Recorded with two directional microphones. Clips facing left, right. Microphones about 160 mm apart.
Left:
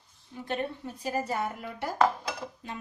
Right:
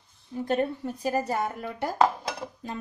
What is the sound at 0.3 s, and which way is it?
Speech, 40° right (ahead or behind).